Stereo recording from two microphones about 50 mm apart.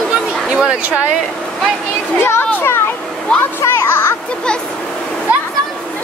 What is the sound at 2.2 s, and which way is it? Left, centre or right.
Children playing, left.